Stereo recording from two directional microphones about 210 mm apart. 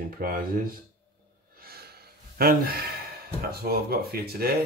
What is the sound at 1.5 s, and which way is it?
Gasp, 45° right (ahead or behind).